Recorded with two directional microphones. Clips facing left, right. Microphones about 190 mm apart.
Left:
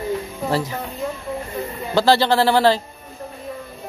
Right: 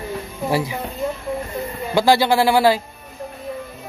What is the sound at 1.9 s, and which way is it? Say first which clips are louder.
Speech: right 1 dB; 10° right (ahead or behind).